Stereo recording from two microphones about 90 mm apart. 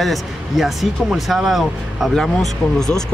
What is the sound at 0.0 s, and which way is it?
Speech, centre (ahead or behind).